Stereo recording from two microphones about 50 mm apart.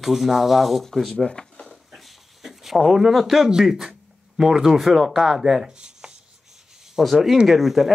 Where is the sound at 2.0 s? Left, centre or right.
Centre.